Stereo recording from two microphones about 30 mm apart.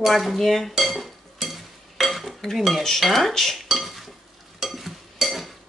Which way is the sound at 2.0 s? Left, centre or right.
Centre.